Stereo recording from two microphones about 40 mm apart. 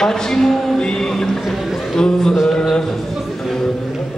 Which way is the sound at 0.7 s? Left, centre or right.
Centre.